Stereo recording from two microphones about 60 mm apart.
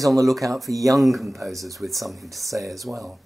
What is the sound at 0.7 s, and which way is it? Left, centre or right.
Speech, right.